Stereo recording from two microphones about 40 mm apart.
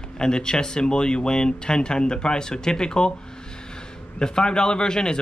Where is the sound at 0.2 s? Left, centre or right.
Left.